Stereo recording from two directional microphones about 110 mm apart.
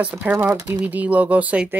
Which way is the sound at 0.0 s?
15° right (ahead or behind).